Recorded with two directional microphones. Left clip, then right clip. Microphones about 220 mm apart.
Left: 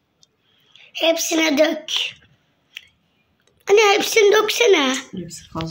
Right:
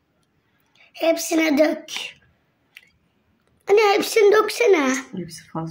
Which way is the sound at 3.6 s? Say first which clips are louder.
Left 2 dB; 5° right (ahead or behind).